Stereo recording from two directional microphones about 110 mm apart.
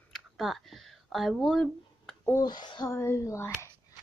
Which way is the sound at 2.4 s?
40° left (ahead or behind).